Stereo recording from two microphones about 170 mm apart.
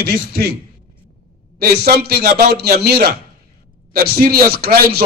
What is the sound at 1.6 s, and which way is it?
A man's voice, 65° right (ahead or behind).